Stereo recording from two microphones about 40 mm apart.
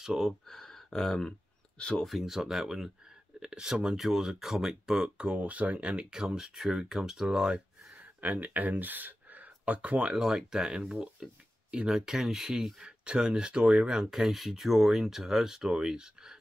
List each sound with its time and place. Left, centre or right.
0.5 s speech: centre
1.8 s speech: left
2.0 s speech: centre
5.3 s speech: right
6.1 s speech: centre
8.0 s speech: right
10.0 s speech: centre